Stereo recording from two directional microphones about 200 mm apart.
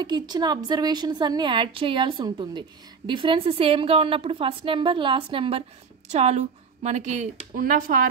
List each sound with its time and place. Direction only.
0.0 s a woman's voice: 20° right (ahead or behind); by 7.9 s 40° right (ahead or behind)